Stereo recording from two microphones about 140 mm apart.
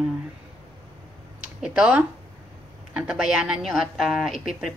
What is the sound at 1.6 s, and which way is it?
Speech, 5° right (ahead or behind).